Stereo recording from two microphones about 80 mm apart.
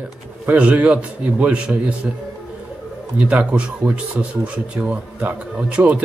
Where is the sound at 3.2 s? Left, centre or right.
Centre.